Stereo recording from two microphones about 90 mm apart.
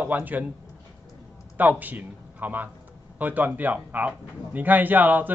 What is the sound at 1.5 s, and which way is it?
Speech, 20° right (ahead or behind).